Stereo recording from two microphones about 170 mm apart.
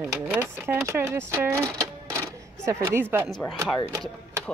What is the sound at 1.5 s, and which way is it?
Sewing machine, 15° right (ahead or behind).